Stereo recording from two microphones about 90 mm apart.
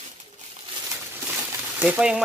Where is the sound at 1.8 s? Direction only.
15° right (ahead or behind).